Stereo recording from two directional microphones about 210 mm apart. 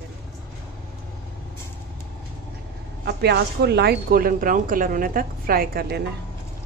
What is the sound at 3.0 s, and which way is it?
Speech, 50° right (ahead or behind).